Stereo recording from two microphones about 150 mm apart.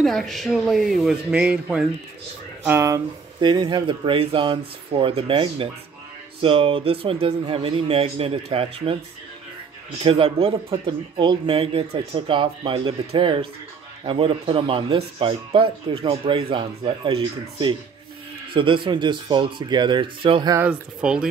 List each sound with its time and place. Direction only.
0.0 s speech: centre (ahead or behind)
2.6 s speech: 15° right (ahead or behind); by 8.9 s 40° right (ahead or behind)
10.0 s speech: 40° right (ahead or behind)
20.5 s speech: 10° right (ahead or behind)